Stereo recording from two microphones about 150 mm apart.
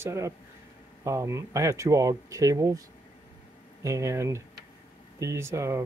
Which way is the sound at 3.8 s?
20° right (ahead or behind).